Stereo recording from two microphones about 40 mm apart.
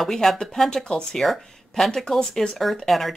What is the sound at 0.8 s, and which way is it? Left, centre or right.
Speech, left.